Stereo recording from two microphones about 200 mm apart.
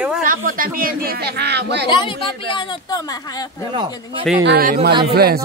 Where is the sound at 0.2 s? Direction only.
45° right (ahead or behind).